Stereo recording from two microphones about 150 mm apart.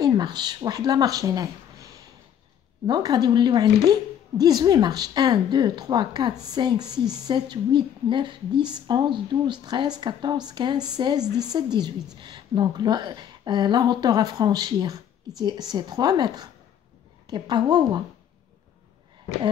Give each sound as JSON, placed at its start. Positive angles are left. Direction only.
{"t": 0.0, "sound": "a woman's voice", "side_deg": -30}
{"t": 2.9, "sound": "a woman's voice", "side_deg": -25}